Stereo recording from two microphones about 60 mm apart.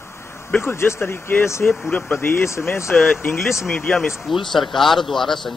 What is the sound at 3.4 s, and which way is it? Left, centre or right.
Speech, centre.